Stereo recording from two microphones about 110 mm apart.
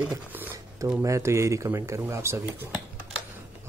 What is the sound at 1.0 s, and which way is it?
Speech, 25° right (ahead or behind).